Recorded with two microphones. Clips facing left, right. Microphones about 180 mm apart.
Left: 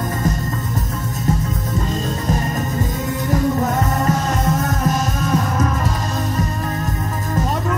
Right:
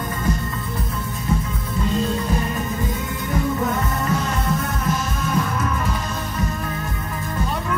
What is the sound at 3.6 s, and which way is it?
Music, 40° left (ahead or behind).